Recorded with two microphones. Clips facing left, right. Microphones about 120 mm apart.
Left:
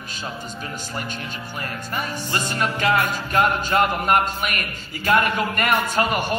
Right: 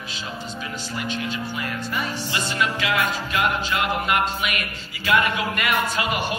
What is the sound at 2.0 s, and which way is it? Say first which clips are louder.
Music: left 3 dB; 45° left (ahead or behind).